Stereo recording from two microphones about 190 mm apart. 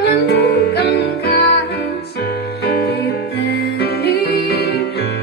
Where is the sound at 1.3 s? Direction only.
55° left (ahead or behind).